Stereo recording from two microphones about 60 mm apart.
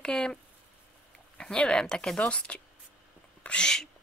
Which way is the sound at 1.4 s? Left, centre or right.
Centre.